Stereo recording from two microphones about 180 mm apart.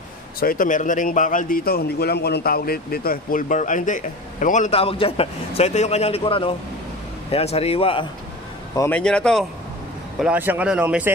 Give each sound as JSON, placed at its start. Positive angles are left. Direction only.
{"t": 0.4, "sound": "a man's voice", "side_deg": 50}
{"t": 8.7, "sound": "a man's voice", "side_deg": 10}
{"t": 10.2, "sound": "speech", "side_deg": -10}